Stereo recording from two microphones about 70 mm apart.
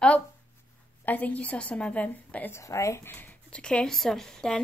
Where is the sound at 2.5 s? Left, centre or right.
Left.